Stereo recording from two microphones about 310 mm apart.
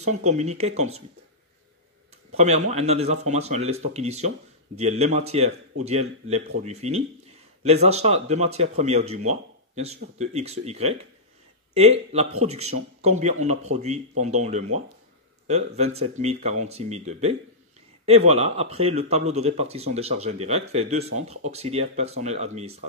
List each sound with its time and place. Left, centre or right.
0.0 s speech: right
2.3 s speech: right